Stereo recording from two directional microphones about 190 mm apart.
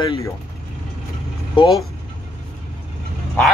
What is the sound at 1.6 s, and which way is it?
Speech, 25° left (ahead or behind).